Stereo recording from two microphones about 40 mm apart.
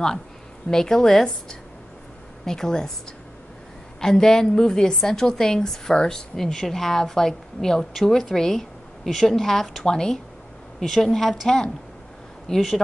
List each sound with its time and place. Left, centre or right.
0.7 s a woman's voice: centre
4.0 s a woman's voice: centre
11.4 s a woman's voice: centre
12.4 s a woman's voice: centre